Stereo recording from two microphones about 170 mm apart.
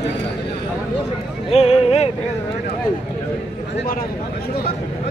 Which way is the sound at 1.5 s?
35° left (ahead or behind).